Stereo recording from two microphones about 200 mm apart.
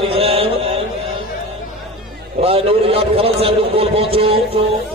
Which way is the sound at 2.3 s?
30° right (ahead or behind).